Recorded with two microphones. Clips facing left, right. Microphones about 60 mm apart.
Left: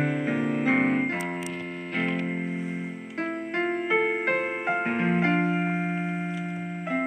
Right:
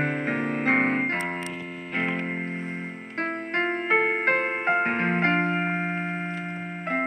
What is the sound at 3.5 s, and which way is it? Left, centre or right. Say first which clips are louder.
Music: right 2 dB; right.